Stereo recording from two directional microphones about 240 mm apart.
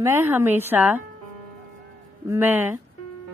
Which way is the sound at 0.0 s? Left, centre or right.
Centre.